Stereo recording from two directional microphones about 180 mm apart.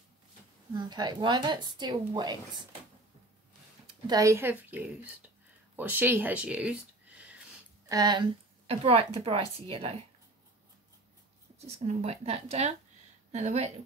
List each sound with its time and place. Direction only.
0.7 s speech: 25° right (ahead or behind)
3.8 s speech: 20° right (ahead or behind)
7.9 s speech: 20° right (ahead or behind)
8.6 s a woman's voice: 35° right (ahead or behind)
11.5 s a woman's voice: 35° right (ahead or behind)